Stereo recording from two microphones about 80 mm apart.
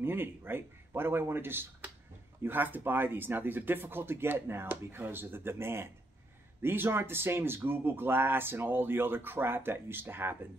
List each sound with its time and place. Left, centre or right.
0.0 s speech: right